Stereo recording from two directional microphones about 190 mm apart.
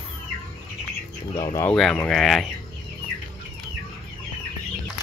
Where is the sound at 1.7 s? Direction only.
5° left (ahead or behind).